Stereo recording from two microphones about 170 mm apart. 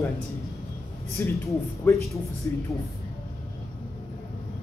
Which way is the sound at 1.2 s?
10° left (ahead or behind).